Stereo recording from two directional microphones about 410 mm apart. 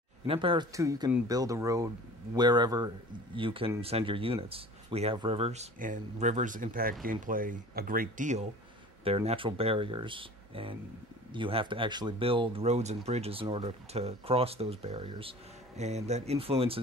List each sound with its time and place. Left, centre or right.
0.3 s speech: centre